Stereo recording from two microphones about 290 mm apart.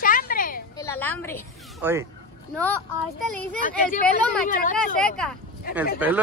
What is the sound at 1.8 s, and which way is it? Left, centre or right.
Speech, centre.